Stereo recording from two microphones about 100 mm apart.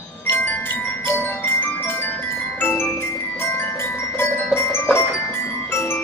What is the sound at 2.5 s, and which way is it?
Glockenspiel, 20° left (ahead or behind).